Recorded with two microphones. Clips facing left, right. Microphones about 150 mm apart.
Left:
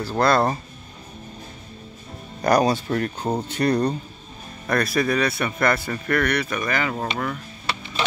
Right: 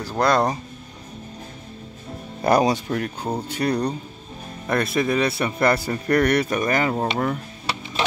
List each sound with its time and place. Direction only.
0.2 s speech: 15° right (ahead or behind)
2.4 s a man's voice: 20° right (ahead or behind)
2.9 s speech: 10° right (ahead or behind)
4.6 s a man's voice: 20° right (ahead or behind)